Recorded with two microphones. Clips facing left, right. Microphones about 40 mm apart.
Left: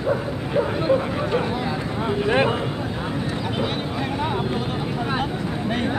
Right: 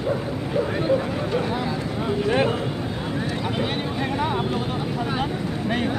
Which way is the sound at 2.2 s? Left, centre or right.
Left.